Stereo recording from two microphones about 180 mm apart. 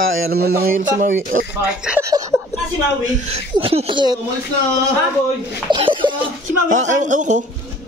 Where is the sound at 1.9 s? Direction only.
15° right (ahead or behind).